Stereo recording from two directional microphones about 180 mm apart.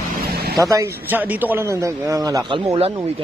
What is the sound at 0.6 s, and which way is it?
A man's voice, 15° right (ahead or behind).